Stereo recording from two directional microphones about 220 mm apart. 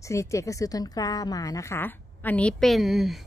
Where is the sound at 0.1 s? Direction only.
15° left (ahead or behind).